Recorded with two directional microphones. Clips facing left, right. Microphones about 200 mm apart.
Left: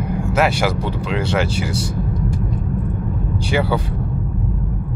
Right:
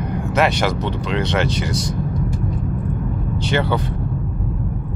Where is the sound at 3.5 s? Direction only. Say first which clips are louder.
Left 1 dB; 10° left (ahead or behind).